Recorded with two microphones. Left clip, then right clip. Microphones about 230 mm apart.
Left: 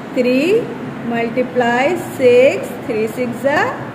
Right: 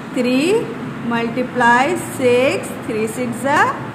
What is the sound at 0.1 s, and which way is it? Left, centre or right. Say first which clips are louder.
A woman's voice: left 2 dB; right.